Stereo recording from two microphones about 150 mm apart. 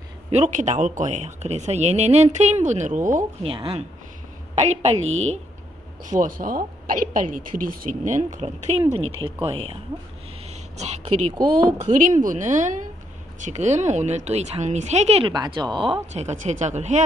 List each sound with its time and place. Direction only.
0.3 s speech: 50° right (ahead or behind)
3.4 s speech: 40° right (ahead or behind)
6.0 s a woman's voice: 60° right (ahead or behind)
7.9 s a woman's voice: 55° right (ahead or behind)
8.9 s speech: 35° right (ahead or behind)
10.4 s a sound: 50° right (ahead or behind)
11.8 s a woman's voice: 55° right (ahead or behind)
15.3 s speech: 30° right (ahead or behind)
16.1 s speech: 50° right (ahead or behind)